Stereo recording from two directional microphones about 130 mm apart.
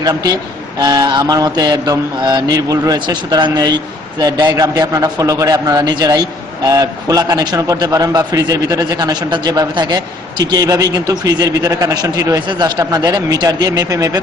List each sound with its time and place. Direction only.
0.0 s a man's voice: 30° right (ahead or behind)